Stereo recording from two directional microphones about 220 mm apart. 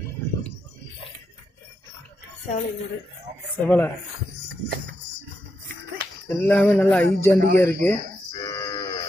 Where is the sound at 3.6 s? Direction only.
10° left (ahead or behind).